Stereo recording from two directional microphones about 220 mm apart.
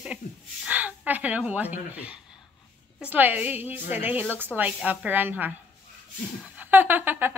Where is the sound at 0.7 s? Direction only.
5° right (ahead or behind).